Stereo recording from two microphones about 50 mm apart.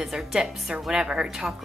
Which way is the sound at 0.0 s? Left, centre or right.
Centre.